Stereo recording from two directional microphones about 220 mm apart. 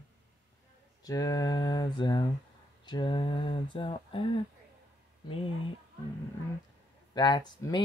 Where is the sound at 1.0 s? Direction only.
15° left (ahead or behind).